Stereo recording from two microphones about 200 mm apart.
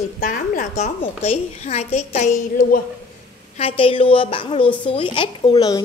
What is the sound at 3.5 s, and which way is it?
A woman's voice, 25° left (ahead or behind).